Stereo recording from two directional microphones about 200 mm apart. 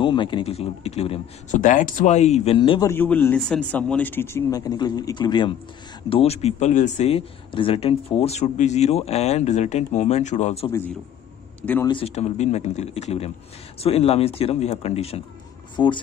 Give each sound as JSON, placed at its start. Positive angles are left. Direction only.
{"t": 0.0, "sound": "speech", "side_deg": 25}
{"t": 1.6, "sound": "speech", "side_deg": 40}
{"t": 2.9, "sound": "speech", "side_deg": 10}
{"t": 10.7, "sound": "speech", "side_deg": 10}
{"t": 11.9, "sound": "speech", "side_deg": 30}